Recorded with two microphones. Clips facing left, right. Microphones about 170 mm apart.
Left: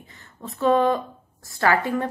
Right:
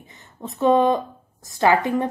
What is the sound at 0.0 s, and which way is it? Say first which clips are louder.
A woman's voice: right 3 dB; 20° right (ahead or behind).